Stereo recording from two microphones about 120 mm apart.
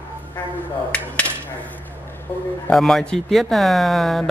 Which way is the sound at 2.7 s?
5° left (ahead or behind).